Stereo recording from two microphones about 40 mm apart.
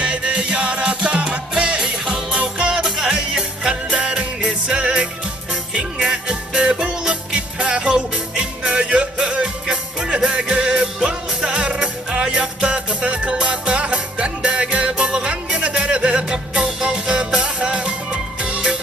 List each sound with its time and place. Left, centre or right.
0.0 s music: right
6.0 s music: centre